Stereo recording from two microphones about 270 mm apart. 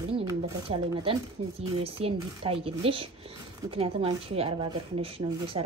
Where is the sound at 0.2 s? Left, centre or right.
Centre.